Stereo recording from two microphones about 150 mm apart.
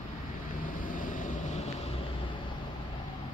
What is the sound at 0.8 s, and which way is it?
Vehicle, 60° left (ahead or behind).